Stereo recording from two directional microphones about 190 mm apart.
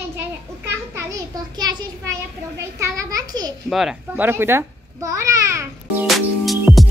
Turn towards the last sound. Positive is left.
turn(degrees=0)  # may be behind; listen again after turning